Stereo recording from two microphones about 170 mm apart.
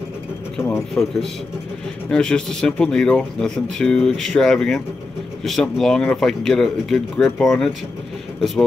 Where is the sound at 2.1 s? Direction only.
5° left (ahead or behind).